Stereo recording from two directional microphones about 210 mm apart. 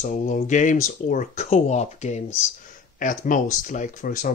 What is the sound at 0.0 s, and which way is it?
Speech, 35° left (ahead or behind).